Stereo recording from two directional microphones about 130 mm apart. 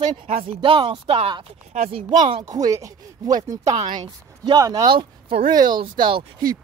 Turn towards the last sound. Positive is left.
turn(degrees=-35)  # may be behind; listen again after turning